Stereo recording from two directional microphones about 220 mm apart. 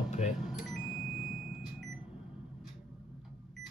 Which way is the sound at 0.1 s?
35° left (ahead or behind).